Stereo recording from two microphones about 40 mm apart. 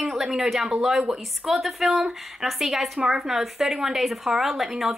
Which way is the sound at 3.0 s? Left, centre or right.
Centre.